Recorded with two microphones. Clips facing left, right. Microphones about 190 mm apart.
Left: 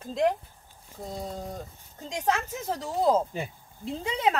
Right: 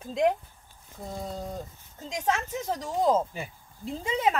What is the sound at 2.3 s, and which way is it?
Speech, 5° left (ahead or behind).